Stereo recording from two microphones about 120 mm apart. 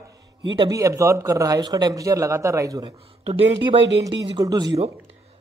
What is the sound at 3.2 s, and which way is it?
Speech, 55° right (ahead or behind).